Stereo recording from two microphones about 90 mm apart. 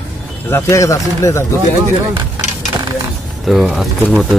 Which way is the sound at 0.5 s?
35° left (ahead or behind).